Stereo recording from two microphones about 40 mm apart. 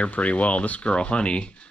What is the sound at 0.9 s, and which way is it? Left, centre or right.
Speech, left.